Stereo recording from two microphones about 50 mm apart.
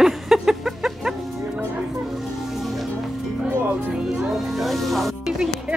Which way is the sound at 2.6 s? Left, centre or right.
Centre.